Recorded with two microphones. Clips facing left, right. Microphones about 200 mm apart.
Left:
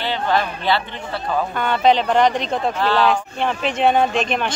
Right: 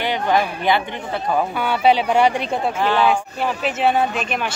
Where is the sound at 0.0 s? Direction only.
15° right (ahead or behind).